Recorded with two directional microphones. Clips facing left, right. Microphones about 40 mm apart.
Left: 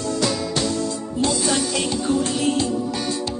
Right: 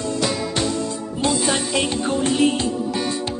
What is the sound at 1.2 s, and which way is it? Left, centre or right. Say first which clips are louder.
Music: even; right.